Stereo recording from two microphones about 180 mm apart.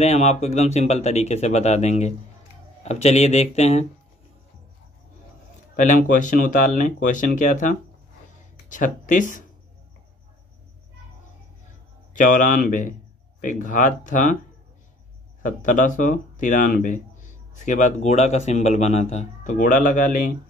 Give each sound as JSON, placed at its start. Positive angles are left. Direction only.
{"t": 0.0, "sound": "speech", "side_deg": 40}
{"t": 5.8, "sound": "speech", "side_deg": 45}
{"t": 12.1, "sound": "speech", "side_deg": 45}
{"t": 15.4, "sound": "speech", "side_deg": 45}